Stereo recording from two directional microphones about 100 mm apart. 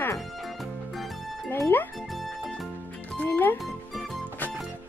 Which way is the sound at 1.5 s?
20° left (ahead or behind).